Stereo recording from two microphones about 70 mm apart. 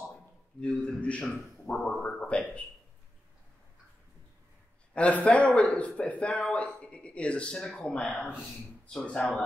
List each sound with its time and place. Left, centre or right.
0.6 s speech: centre
4.9 s speech: centre